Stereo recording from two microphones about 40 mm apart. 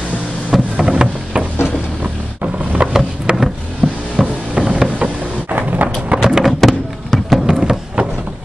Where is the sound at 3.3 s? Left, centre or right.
Right.